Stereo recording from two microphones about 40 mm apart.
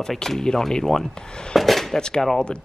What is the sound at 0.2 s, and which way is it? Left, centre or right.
Speech, centre.